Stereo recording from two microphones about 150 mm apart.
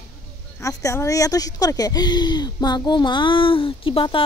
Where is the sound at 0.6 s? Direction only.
20° left (ahead or behind).